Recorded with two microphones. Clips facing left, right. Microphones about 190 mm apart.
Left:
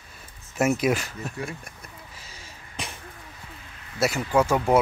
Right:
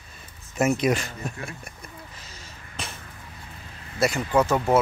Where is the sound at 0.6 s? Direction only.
5° left (ahead or behind).